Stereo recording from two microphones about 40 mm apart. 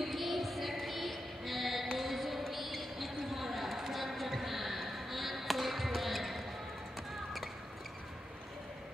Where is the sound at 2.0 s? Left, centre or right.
Centre.